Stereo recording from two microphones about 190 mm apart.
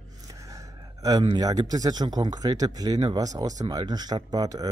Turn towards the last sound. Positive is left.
turn(degrees=-20)  # may be behind; listen again after turning